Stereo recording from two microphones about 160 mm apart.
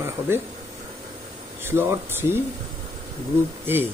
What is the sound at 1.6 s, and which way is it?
Speech, 15° right (ahead or behind).